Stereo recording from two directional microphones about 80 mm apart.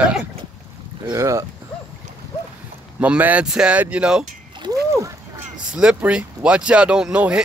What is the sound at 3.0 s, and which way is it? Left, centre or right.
Speech, centre.